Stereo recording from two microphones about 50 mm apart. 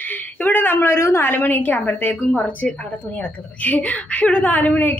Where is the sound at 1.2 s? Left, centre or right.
Left.